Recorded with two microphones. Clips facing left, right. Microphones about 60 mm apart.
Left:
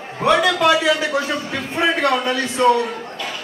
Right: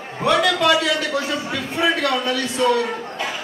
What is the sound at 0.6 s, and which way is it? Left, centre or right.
A man's voice, centre.